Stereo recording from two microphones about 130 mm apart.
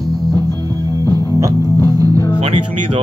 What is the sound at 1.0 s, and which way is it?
Music, 30° right (ahead or behind).